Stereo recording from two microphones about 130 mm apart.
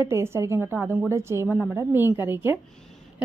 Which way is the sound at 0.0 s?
20° right (ahead or behind).